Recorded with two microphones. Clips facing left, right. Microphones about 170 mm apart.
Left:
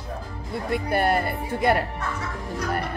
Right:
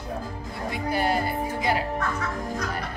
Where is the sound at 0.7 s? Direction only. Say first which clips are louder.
Left 3 dB; 60° left (ahead or behind).